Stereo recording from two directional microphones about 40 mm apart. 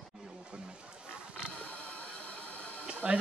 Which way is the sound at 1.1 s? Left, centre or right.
Right.